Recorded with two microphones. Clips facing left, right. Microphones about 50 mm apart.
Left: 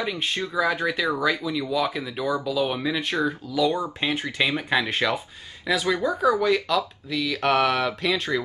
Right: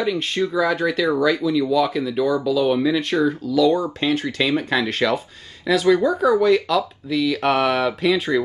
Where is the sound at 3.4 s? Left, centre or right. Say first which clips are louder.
Right 6 dB; centre.